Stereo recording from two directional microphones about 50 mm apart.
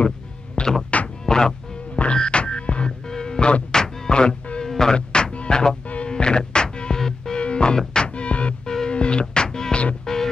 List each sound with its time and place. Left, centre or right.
0.6 s music: left
1.2 s music: centre